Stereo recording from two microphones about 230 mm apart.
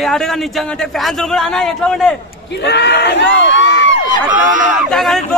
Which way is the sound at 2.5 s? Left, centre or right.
Left.